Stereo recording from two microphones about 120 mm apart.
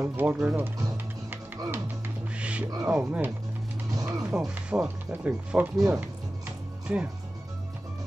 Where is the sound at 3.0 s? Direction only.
15° right (ahead or behind).